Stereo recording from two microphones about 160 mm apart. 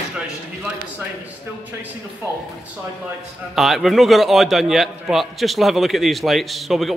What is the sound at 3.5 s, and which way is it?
A man's voice, centre (ahead or behind).